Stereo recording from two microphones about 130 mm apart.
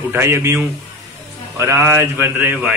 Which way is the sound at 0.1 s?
20° right (ahead or behind).